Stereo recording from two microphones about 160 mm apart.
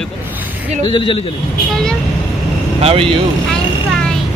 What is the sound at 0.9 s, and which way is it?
Speech, 35° left (ahead or behind).